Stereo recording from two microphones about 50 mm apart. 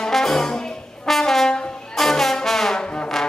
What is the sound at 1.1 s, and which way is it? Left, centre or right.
Brass instrument, centre.